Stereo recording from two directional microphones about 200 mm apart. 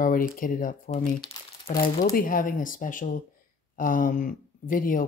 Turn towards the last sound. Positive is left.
turn(degrees=45)  # may be behind; listen again after turning